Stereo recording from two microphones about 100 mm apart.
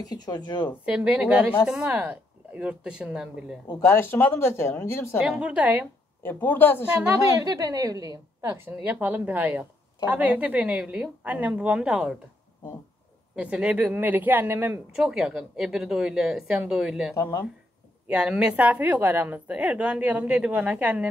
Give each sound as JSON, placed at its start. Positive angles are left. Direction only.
{"t": 0.0, "sound": "speech", "side_deg": 40}
{"t": 0.8, "sound": "a woman's voice", "side_deg": -10}
{"t": 3.8, "sound": "speech", "side_deg": 25}
{"t": 5.2, "sound": "a woman's voice", "side_deg": -10}
{"t": 6.2, "sound": "speech", "side_deg": 20}
{"t": 7.3, "sound": "a woman's voice", "side_deg": -35}
{"t": 8.8, "sound": "a woman's voice", "side_deg": -15}
{"t": 13.4, "sound": "a woman's voice", "side_deg": -10}
{"t": 15.0, "sound": "a woman's voice", "side_deg": -5}
{"t": 17.1, "sound": "speech", "side_deg": 30}
{"t": 18.0, "sound": "a woman's voice", "side_deg": -15}